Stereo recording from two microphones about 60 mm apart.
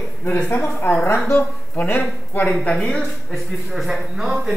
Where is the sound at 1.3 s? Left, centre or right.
Left.